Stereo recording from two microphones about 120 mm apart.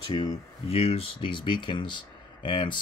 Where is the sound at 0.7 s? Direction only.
55° left (ahead or behind).